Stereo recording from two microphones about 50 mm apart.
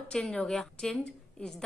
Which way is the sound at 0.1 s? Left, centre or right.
Centre.